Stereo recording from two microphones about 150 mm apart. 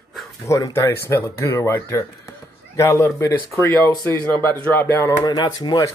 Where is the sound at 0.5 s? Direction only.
20° left (ahead or behind).